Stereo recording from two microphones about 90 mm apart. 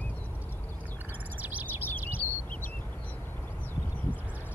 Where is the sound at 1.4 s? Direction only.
20° right (ahead or behind).